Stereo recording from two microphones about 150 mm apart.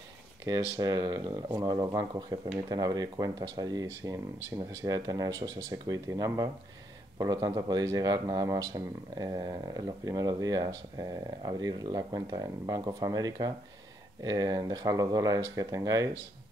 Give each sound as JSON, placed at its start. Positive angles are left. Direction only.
{"t": 0.5, "sound": "speech", "side_deg": -25}